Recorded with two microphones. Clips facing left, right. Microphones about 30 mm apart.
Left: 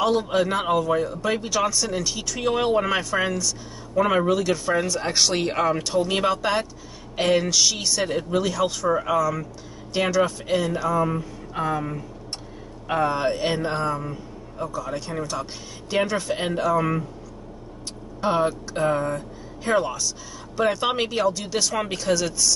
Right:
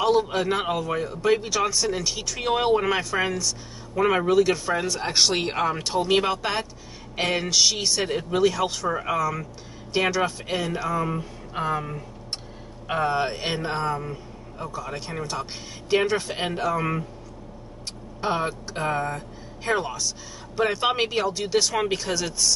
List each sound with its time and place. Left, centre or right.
0.0 s speech: centre
12.8 s speech: centre
14.6 s a man's voice: right
18.2 s speech: centre